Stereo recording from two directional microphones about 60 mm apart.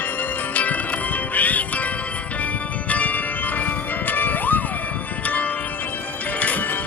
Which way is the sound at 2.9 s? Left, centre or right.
Left.